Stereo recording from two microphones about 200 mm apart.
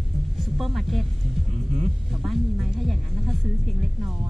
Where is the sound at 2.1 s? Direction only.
Centre (ahead or behind).